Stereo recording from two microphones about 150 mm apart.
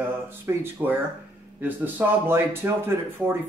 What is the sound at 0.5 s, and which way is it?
Speech, 15° right (ahead or behind).